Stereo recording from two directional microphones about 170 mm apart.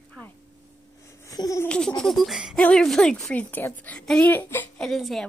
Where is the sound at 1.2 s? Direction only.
20° left (ahead or behind).